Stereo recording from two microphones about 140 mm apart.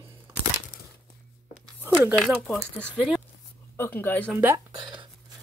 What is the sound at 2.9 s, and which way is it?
Speech, 5° right (ahead or behind).